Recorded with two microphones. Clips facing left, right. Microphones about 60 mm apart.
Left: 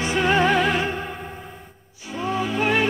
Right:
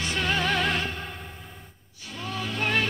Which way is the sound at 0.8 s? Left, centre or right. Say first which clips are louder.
Left 7 dB; centre.